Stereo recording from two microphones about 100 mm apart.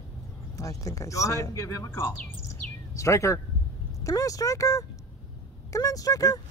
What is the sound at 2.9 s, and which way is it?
Speech, 30° left (ahead or behind).